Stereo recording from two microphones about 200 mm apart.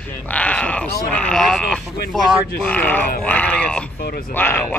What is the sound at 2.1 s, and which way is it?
Speech, centre (ahead or behind).